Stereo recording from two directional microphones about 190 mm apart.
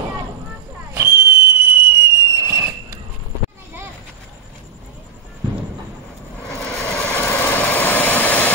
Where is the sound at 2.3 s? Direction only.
15° right (ahead or behind).